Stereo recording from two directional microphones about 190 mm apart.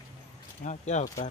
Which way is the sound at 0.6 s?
40° left (ahead or behind).